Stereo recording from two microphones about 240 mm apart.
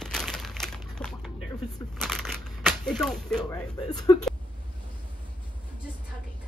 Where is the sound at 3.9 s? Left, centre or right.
Centre.